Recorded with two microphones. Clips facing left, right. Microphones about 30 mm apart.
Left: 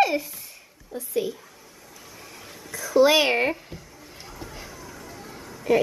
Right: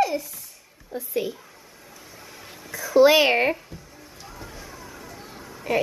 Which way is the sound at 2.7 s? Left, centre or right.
Centre.